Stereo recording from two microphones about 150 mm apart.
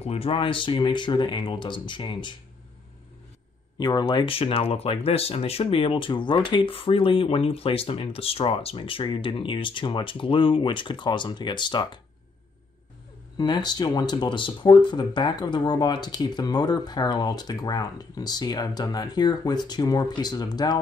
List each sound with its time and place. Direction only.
0.0 s speech: 40° left (ahead or behind)
3.7 s speech: 30° left (ahead or behind)
13.4 s speech: 30° left (ahead or behind)